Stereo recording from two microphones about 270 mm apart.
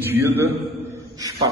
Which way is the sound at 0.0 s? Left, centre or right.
Centre.